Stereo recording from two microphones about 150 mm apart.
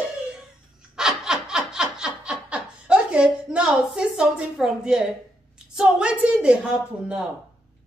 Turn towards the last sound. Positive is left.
turn(degrees=-5)  # may be behind; listen again after turning